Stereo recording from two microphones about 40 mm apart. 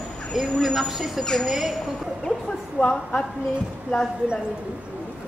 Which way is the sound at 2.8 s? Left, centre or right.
Left.